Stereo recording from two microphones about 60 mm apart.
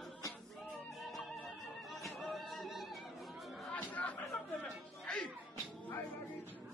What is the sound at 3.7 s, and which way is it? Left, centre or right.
Music, left.